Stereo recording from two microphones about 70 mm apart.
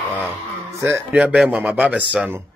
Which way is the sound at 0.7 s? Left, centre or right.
Right.